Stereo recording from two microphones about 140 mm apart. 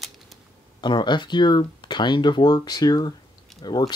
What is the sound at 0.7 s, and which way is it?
Speech, 30° left (ahead or behind).